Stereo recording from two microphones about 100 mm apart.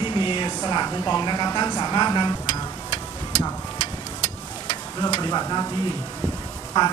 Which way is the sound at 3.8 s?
45° right (ahead or behind).